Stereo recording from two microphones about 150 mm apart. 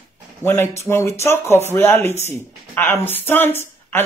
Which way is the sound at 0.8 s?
15° left (ahead or behind).